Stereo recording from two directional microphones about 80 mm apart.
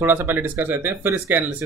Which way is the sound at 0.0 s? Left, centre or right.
Right.